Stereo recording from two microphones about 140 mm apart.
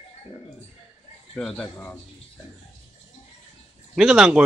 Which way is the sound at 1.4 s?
5° left (ahead or behind).